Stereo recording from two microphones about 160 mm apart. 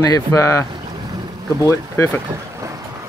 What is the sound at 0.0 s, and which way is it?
Speech, 20° left (ahead or behind).